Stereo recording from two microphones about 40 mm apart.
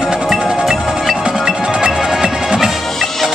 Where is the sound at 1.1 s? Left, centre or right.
Centre.